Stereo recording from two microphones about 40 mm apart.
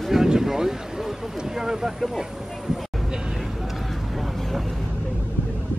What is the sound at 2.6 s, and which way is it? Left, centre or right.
Vehicle, centre.